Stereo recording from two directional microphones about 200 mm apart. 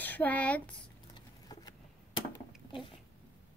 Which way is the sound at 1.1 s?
20° left (ahead or behind).